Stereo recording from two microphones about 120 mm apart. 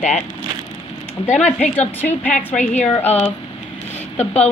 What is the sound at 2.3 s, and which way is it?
Speech, 75° left (ahead or behind).